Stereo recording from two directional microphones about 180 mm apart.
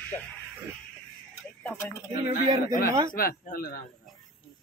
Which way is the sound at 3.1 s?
55° left (ahead or behind).